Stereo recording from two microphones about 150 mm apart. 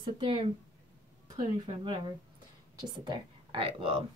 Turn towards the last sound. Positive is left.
turn(degrees=-35)  # may be behind; listen again after turning